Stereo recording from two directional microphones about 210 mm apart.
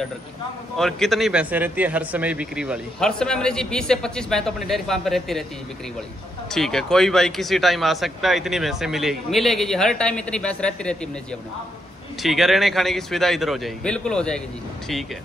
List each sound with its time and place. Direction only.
0.7 s speech: centre (ahead or behind)
6.5 s speech: centre (ahead or behind)
12.2 s speech: centre (ahead or behind)